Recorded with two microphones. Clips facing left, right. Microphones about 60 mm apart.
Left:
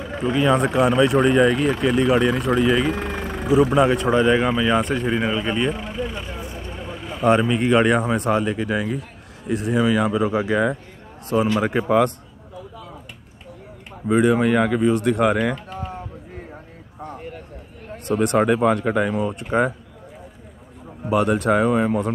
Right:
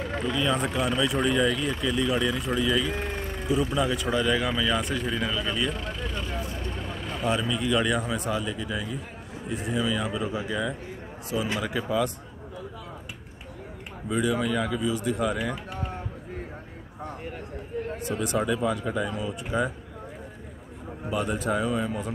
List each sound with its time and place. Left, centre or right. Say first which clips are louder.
0.2 s speech: left 9 dB; left
5.7 s vehicle: left 6 dB; centre
7.2 s speech: left 9 dB; left
11.7 s a man's voice: left 8 dB; left
14.0 s speech: left 9 dB; left
15.5 s a sound: left 3 dB; centre
17.0 s a sound: left 3 dB; centre
18.0 s speech: left 10 dB; left
21.1 s speech: left 9 dB; left